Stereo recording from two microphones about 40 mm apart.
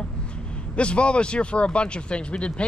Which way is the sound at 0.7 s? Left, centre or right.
Left.